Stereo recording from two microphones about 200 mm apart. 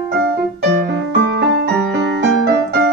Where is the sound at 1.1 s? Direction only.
60° right (ahead or behind).